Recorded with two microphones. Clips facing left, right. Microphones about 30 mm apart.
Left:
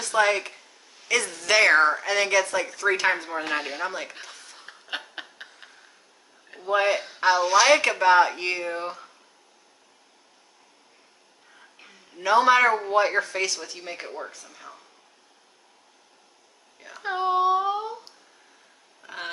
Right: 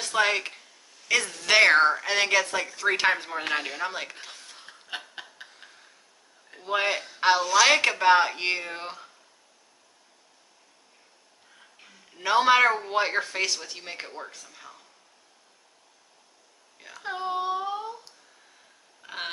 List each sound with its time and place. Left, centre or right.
0.0 s speech: centre
1.1 s speech: right
1.4 s speech: centre
2.0 s a woman's voice: right
4.6 s a sound: centre
6.6 s speech: centre
7.2 s speech: right
12.2 s speech: centre
12.6 s speech: centre
12.9 s speech: centre
14.4 s speech: centre
16.9 s a sound: centre
19.0 s a sound: centre